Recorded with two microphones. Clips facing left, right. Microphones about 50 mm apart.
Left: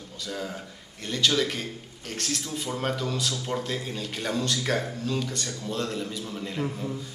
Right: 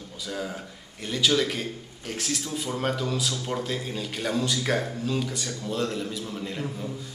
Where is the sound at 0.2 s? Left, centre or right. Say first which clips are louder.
Right 1 dB; centre.